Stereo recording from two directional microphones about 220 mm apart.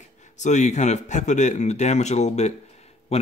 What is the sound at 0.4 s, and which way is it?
Speech, 30° left (ahead or behind).